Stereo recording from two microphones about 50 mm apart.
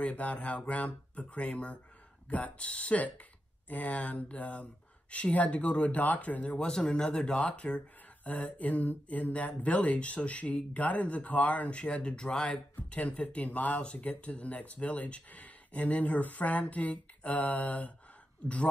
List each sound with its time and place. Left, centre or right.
0.0 s speech: left
6.5 s speech: centre; by 17.9 s left